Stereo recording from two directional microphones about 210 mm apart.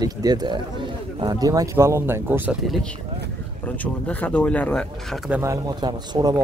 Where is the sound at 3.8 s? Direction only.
5° left (ahead or behind).